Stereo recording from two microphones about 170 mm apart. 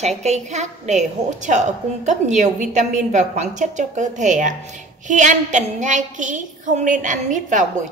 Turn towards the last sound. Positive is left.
turn(degrees=-45)  # may be behind; listen again after turning